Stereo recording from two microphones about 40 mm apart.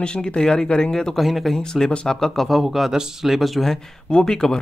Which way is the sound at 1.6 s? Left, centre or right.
Centre.